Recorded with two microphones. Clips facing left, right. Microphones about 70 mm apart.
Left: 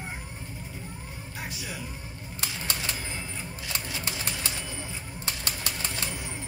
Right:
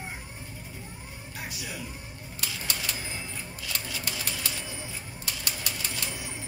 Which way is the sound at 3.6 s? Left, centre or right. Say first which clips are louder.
Left 1 dB; left.